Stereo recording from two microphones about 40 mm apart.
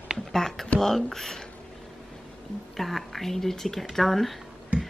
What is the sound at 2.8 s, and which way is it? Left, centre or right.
Speech, centre.